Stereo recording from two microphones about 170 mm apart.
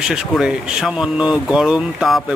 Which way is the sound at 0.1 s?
5° right (ahead or behind).